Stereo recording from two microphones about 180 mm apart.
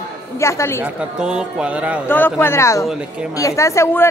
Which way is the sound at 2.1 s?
10° left (ahead or behind).